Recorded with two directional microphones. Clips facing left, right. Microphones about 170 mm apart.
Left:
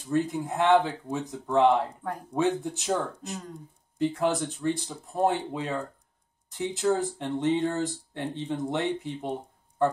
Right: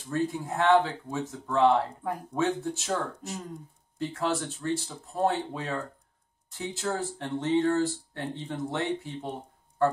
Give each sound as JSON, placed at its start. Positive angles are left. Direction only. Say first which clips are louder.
{"t": 0.1, "sound": "speech", "louder": "left 2 dB", "side_deg": 20}
{"t": 4.0, "sound": "speech", "louder": "left 4 dB", "side_deg": 20}